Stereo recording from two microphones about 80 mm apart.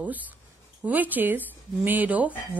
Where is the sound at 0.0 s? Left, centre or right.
Right.